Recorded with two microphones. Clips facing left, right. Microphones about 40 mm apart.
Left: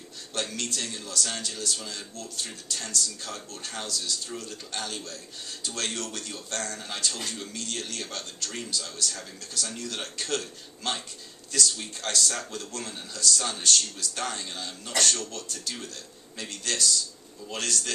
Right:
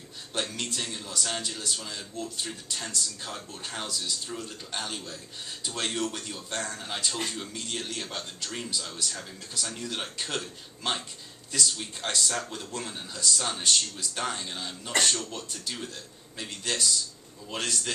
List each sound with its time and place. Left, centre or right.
0.3 s a man's voice: centre